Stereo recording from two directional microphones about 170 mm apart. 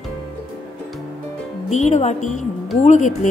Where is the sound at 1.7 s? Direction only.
40° left (ahead or behind).